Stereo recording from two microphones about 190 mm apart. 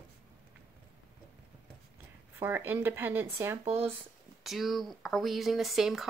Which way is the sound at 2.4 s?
10° right (ahead or behind).